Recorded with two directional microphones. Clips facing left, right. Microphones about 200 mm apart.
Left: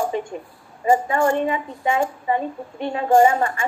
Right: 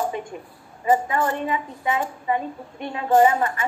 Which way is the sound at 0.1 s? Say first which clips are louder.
Left 5 dB; 30° left (ahead or behind).